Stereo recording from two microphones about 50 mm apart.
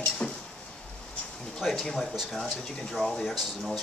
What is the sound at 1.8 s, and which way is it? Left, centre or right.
Speech, centre.